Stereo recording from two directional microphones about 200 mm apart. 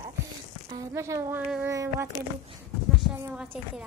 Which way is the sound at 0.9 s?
15° right (ahead or behind).